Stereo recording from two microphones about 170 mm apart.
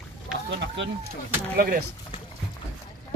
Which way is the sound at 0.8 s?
90° right.